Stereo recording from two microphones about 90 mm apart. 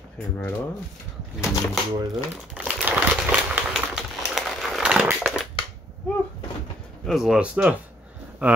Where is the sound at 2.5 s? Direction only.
10° right (ahead or behind).